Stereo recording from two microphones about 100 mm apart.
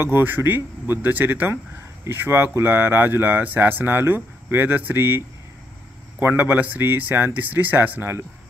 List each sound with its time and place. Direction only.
0.0 s speech: 20° right (ahead or behind)